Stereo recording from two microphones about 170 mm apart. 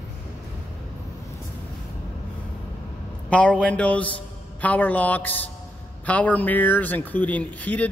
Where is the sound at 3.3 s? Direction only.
5° left (ahead or behind).